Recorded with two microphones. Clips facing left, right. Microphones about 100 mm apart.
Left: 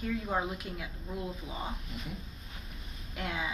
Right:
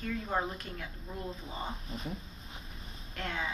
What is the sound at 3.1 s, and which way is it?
Speech, 10° left (ahead or behind).